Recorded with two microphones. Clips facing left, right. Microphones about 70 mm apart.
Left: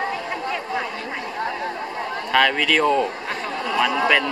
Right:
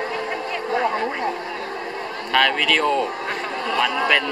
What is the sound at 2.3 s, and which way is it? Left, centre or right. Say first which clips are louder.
Speech: even; centre.